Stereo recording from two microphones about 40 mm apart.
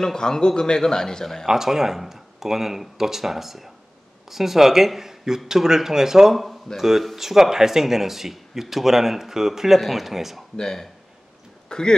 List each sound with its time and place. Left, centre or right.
0.0 s a man's voice: centre
1.5 s speech: centre
10.5 s a man's voice: centre